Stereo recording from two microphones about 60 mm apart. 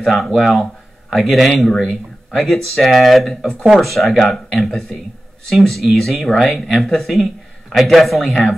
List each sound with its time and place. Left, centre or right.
0.0 s speech: centre